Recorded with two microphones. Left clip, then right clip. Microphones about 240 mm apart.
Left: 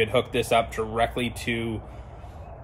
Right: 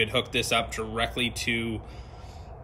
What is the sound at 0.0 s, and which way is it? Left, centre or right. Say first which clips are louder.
Speech: left 3 dB; left.